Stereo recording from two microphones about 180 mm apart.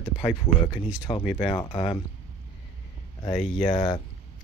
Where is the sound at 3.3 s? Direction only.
30° left (ahead or behind).